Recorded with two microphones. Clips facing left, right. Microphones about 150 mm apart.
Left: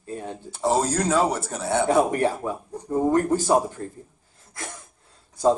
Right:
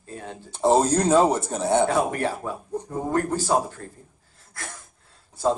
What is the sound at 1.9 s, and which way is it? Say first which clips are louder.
Speech: left 3 dB; 15° left (ahead or behind).